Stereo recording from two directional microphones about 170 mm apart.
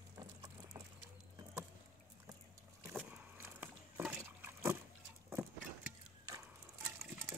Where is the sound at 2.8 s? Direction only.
10° right (ahead or behind).